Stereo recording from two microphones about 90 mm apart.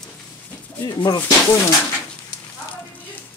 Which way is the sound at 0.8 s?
50° left (ahead or behind).